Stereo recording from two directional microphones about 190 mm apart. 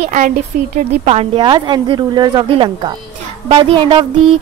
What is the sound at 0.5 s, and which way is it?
Speech, 50° right (ahead or behind).